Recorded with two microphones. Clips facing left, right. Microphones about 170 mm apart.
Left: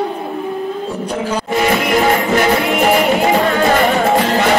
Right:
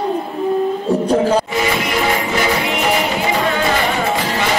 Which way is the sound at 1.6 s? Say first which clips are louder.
Left 4 dB; 50° left (ahead or behind).